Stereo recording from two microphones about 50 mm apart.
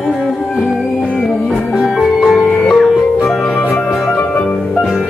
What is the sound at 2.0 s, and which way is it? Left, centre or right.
Music, centre.